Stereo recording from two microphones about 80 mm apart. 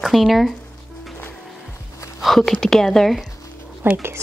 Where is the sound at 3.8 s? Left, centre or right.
Right.